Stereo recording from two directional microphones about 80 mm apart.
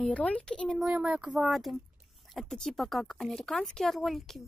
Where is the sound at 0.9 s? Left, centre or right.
Centre.